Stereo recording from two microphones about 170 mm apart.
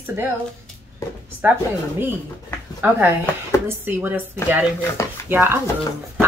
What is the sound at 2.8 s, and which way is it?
Speech, 10° right (ahead or behind).